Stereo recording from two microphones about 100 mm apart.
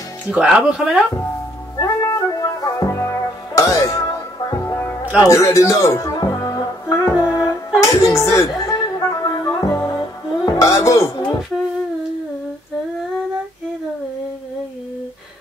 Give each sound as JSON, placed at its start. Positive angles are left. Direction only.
{"t": 0.3, "sound": "speech", "side_deg": -10}
{"t": 1.8, "sound": "music", "side_deg": 35}